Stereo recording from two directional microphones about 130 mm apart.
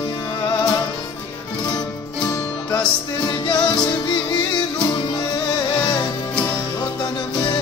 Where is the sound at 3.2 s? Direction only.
35° left (ahead or behind).